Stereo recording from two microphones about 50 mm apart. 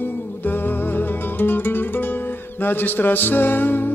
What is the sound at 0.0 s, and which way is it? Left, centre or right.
Music, left.